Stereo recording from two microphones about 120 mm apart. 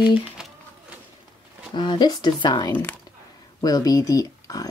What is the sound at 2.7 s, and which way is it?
Speech, 15° left (ahead or behind).